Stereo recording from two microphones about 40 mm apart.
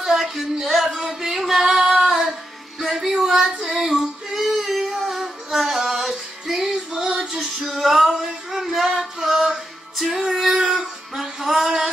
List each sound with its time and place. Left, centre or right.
0.0 s music: centre
2.0 s child singing: centre
2.8 s child singing: centre
5.1 s music: centre
10.8 s music: centre